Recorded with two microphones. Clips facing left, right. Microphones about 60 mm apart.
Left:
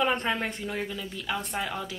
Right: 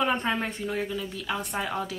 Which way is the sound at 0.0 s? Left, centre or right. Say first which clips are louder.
Right 1 dB; centre.